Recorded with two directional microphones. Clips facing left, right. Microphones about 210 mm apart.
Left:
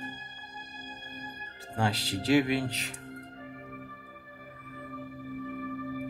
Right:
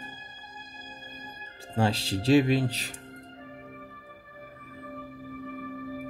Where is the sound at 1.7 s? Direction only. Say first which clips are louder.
Right 4 dB; 25° right (ahead or behind).